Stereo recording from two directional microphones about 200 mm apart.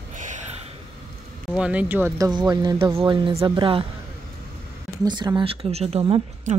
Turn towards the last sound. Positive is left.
turn(degrees=-30)  # may be behind; listen again after turning